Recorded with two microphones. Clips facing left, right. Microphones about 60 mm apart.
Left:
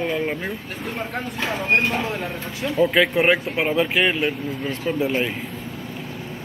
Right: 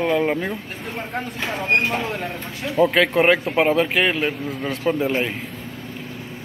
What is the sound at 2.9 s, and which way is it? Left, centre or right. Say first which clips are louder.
Speech: even; right.